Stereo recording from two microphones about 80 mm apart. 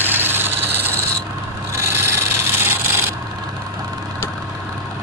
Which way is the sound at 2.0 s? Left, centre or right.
Right.